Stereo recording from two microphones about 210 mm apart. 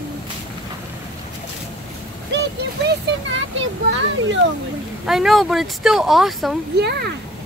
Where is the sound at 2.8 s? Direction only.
60° right (ahead or behind).